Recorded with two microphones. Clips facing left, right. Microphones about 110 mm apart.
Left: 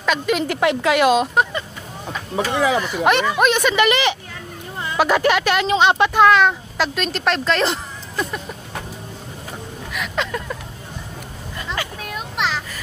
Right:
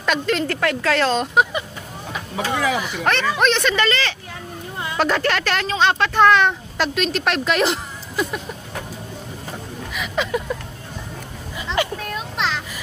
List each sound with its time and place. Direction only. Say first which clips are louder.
0.0 s speech: left 1 dB; centre (ahead or behind)
0.4 s speech: left 3 dB; 15° left (ahead or behind)
1.3 s speech: right 1 dB; 10° right (ahead or behind)
2.7 s speech: left 3 dB; 5° right (ahead or behind)
3.0 s speech: left 3 dB; 15° left (ahead or behind)
6.1 s speech: right 1 dB; 5° left (ahead or behind)
9.9 s a sound: right 2 dB; 5° right (ahead or behind)
12.0 s a sound: even; 5° left (ahead or behind)